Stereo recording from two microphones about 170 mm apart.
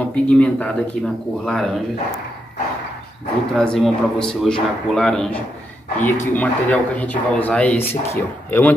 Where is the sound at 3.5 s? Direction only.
5° left (ahead or behind).